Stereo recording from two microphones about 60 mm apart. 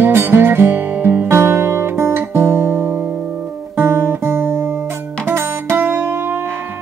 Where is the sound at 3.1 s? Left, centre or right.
Right.